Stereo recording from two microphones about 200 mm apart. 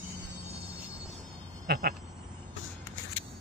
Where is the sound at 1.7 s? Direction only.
50° right (ahead or behind).